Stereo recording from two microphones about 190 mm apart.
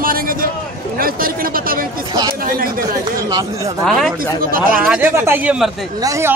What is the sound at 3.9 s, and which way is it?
Speech, centre (ahead or behind).